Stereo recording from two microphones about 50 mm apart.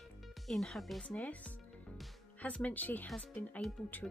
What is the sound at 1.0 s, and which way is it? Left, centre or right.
Speech, centre.